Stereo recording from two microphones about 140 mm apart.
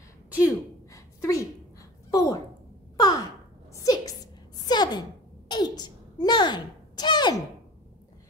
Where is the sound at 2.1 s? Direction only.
25° left (ahead or behind).